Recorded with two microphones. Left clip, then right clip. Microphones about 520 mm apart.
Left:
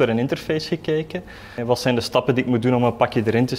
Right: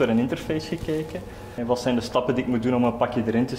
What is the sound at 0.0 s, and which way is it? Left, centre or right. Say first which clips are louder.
A man's voice: left 3 dB; left.